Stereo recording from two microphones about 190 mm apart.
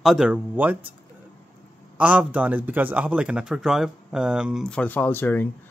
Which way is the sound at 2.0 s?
5° right (ahead or behind).